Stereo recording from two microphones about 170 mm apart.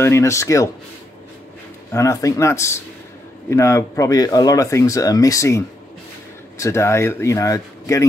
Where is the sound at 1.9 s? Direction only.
20° left (ahead or behind).